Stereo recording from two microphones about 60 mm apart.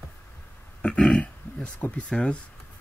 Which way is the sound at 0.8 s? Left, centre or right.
Left.